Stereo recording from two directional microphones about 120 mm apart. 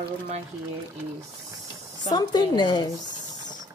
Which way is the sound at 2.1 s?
35° left (ahead or behind).